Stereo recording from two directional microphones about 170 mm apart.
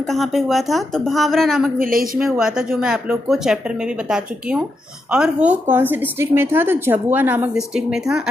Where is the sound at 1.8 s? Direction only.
55° right (ahead or behind).